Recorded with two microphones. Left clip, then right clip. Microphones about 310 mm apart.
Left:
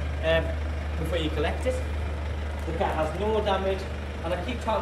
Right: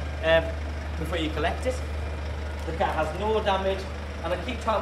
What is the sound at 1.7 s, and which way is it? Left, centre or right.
Speech, centre.